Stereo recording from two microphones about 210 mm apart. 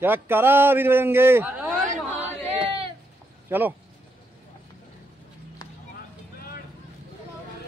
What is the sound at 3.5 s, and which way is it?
Speech, 10° right (ahead or behind).